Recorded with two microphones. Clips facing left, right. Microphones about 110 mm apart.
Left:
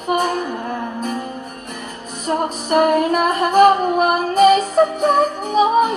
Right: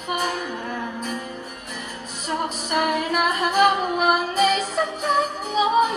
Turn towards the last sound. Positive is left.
turn(degrees=50)  # may be behind; listen again after turning